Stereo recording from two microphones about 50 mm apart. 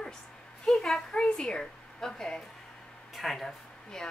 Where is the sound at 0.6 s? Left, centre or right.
Centre.